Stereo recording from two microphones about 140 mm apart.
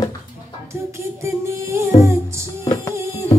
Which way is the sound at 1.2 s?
20° right (ahead or behind).